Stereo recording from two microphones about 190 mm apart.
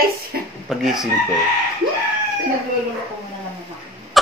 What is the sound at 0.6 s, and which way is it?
Speech, centre (ahead or behind).